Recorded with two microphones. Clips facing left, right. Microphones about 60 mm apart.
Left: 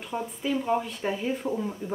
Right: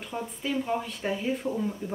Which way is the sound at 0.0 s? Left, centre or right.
Centre.